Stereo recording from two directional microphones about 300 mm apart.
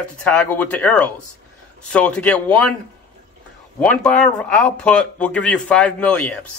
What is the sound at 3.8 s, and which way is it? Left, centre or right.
A man's voice, centre.